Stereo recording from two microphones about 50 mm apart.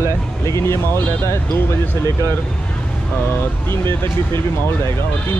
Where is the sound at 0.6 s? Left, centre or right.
Left.